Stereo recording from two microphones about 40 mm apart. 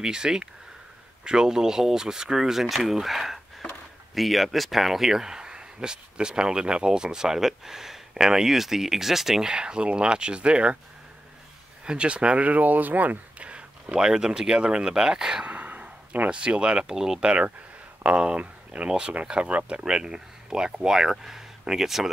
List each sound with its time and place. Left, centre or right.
0.0 s speech: centre
2.6 s speech: centre; by 10.8 s right
11.8 s speech: right
13.4 s a sound: right
13.9 s speech: centre
15.4 s a sound: right
16.3 s speech: right
16.8 s speech: centre
17.2 s speech: right
19.4 s speech: right
19.8 s speech: centre